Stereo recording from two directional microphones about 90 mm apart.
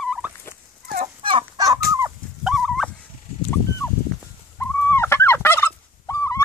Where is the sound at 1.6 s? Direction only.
40° right (ahead or behind).